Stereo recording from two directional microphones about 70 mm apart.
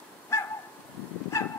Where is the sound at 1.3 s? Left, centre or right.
Left.